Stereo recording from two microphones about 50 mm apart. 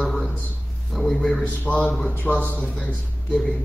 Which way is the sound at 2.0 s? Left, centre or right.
Left.